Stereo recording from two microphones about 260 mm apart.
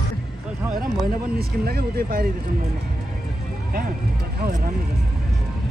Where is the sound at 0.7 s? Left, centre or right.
Centre.